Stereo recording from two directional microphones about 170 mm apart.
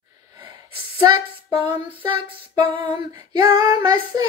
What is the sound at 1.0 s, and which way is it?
Female singing, 25° right (ahead or behind).